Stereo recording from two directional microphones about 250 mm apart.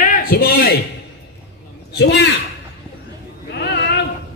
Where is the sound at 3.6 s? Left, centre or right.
Left.